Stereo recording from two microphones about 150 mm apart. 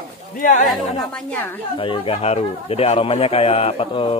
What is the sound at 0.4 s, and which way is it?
Speech, 60° left (ahead or behind).